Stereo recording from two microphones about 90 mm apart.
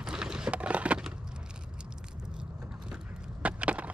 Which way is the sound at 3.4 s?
15° right (ahead or behind).